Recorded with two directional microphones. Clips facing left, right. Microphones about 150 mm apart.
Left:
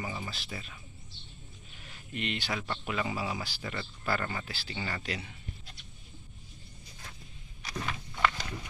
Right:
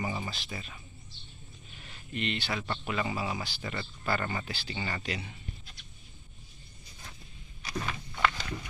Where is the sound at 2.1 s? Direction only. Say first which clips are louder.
Right 2 dB; 10° left (ahead or behind).